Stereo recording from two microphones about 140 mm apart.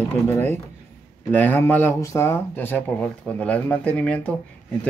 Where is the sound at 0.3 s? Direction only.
15° left (ahead or behind).